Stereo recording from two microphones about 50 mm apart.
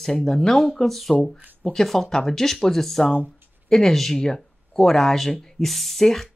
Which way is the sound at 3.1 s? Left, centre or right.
Right.